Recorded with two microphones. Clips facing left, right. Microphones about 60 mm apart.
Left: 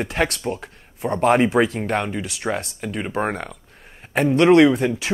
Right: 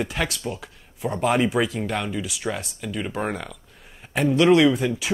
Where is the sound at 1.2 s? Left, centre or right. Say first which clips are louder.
Left 5 dB; left.